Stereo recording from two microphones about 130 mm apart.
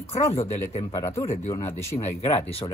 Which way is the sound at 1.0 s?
20° left (ahead or behind).